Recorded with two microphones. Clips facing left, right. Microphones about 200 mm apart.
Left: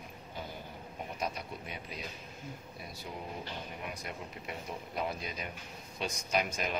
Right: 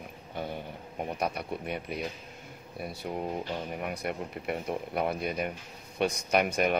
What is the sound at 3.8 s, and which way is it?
Speech, 60° right (ahead or behind).